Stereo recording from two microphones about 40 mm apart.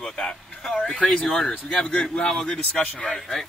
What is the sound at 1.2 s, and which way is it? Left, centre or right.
A man's voice, centre.